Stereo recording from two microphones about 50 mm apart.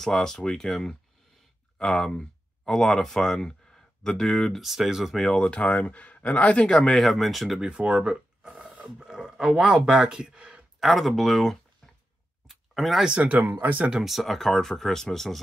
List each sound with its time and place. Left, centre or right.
0.0 s speech: centre
5.1 s speech: centre
5.4 s speech: centre
7.1 s speech: centre
7.6 s a sound: centre
9.0 s speech: centre
10.8 s speech: centre
12.4 s a sound: centre
13.0 s speech: right
13.3 s speech: right
13.9 s speech: centre